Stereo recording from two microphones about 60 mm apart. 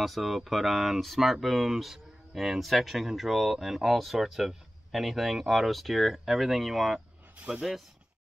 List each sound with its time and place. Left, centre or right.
0.0 s speech: centre
7.3 s speech: right